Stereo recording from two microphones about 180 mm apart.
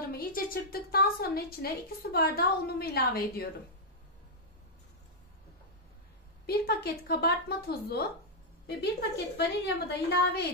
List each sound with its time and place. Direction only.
0.0 s a woman's voice: 55° left (ahead or behind)
6.4 s a woman's voice: 60° left (ahead or behind)